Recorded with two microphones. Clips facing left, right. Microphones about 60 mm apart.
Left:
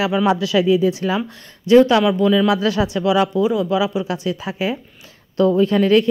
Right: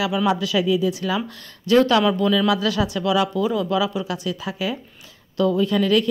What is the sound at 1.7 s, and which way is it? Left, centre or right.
Speech, centre.